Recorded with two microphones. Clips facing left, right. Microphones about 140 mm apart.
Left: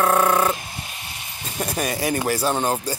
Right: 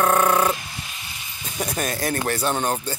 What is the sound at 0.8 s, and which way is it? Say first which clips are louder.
Vehicle: left 2 dB; 50° left (ahead or behind).